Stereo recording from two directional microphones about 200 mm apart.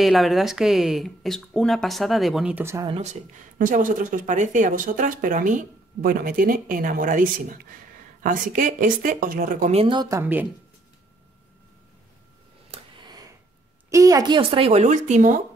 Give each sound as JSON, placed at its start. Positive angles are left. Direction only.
{"t": 0.0, "sound": "speech", "side_deg": 0}
{"t": 2.9, "sound": "speech", "side_deg": -35}
{"t": 12.7, "sound": "a sound", "side_deg": -20}
{"t": 13.8, "sound": "speech", "side_deg": -15}